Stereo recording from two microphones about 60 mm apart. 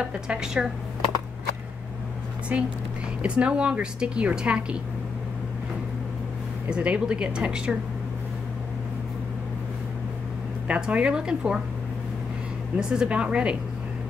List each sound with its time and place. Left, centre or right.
0.0 s speech: centre
2.5 s a woman's voice: right
6.7 s speech: centre
10.7 s speech: right
12.7 s speech: centre